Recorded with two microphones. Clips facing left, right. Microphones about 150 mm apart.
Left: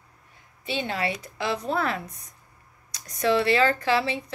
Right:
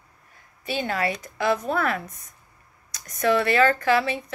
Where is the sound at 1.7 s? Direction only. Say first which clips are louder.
Right 2 dB; 30° left (ahead or behind).